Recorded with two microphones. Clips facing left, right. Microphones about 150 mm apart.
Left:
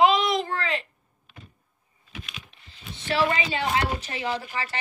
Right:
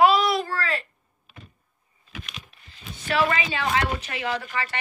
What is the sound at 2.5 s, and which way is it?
Speech, 30° left (ahead or behind).